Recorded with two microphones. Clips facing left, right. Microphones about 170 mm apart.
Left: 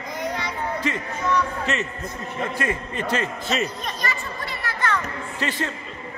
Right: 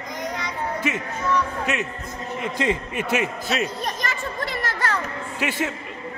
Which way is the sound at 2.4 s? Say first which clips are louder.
Right 2 dB; 15° right (ahead or behind).